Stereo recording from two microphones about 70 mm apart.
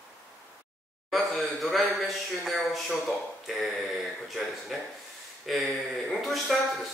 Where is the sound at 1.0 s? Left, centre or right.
Centre.